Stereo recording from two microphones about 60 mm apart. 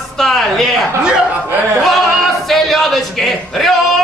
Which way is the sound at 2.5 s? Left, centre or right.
Centre.